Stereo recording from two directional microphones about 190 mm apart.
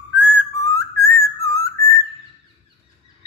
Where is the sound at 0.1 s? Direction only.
10° left (ahead or behind).